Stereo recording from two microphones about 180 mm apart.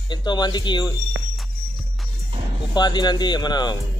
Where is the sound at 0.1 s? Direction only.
25° left (ahead or behind).